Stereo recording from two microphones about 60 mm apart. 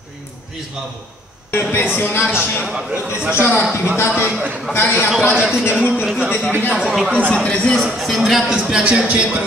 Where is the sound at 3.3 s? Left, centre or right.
Left.